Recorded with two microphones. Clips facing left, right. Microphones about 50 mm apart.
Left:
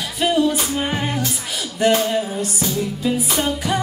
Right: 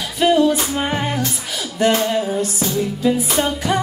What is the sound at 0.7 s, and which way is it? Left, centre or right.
Music, centre.